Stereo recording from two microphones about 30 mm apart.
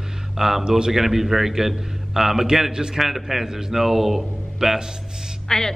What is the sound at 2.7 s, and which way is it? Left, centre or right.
Speech, right.